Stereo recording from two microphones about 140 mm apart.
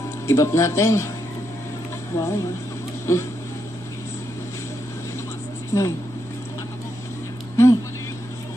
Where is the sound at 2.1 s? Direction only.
20° left (ahead or behind).